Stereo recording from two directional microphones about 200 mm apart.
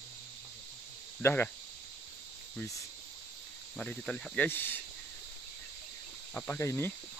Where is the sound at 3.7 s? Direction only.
5° left (ahead or behind).